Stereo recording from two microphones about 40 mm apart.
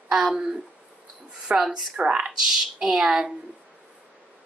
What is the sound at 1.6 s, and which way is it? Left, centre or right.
Speech, centre.